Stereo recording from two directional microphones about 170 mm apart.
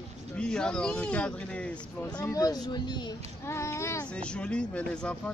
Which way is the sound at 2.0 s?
20° left (ahead or behind).